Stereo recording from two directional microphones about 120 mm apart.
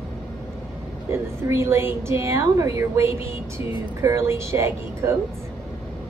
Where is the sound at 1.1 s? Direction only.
20° right (ahead or behind).